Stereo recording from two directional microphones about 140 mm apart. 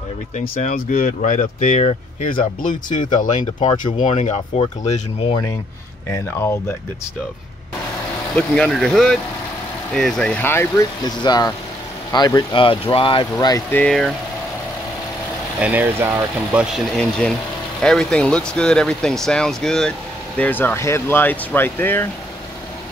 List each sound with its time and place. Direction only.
0.4 s speech: 60° left (ahead or behind)
3.5 s speech: 35° left (ahead or behind)
4.0 s speech: 60° left (ahead or behind)
6.0 s speech: 20° left (ahead or behind)
8.4 s speech: 5° left (ahead or behind)
10.4 s speech: 15° left (ahead or behind)
11.1 s speech: 30° left (ahead or behind)
13.7 s speech: 10° left (ahead or behind)
15.6 s speech: 10° right (ahead or behind)
16.7 s speech: 5° left (ahead or behind)